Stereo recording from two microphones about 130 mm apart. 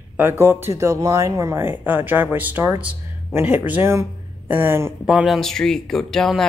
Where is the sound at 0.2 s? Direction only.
20° right (ahead or behind).